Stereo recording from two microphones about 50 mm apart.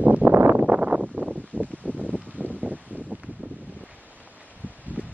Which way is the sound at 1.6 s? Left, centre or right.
Left.